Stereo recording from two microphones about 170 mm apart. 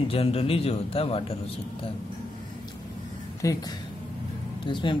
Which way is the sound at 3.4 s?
20° left (ahead or behind).